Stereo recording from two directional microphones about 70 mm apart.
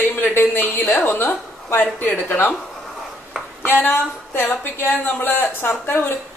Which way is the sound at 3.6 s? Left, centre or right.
Left.